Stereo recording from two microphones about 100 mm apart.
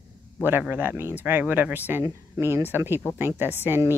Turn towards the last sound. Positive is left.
turn(degrees=-25)  # may be behind; listen again after turning